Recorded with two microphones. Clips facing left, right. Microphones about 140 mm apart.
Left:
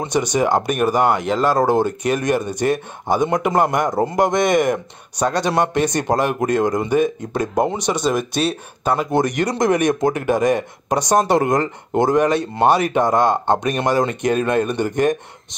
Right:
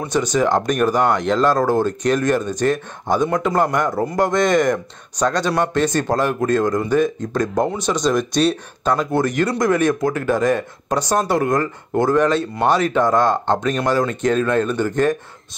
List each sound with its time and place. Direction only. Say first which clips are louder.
0.1 s speech: right 1 dB; 15° left (ahead or behind)